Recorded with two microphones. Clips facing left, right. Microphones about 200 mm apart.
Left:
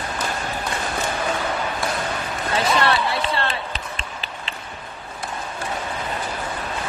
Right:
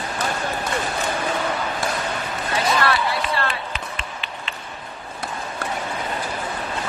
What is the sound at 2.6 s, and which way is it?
Run, 25° left (ahead or behind).